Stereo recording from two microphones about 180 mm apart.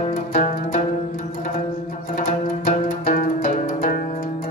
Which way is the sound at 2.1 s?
45° left (ahead or behind).